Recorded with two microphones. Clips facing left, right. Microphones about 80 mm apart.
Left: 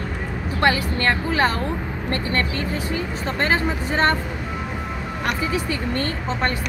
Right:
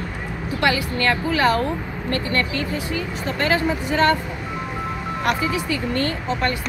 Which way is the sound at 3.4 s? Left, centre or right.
Left.